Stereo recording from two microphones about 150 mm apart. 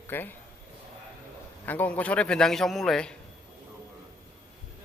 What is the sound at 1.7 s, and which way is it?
A man's voice, 10° left (ahead or behind).